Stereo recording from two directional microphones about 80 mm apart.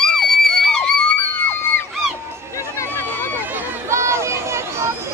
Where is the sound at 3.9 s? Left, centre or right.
Right.